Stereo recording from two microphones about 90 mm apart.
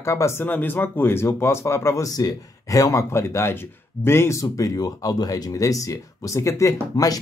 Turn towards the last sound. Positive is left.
turn(degrees=40)  # may be behind; listen again after turning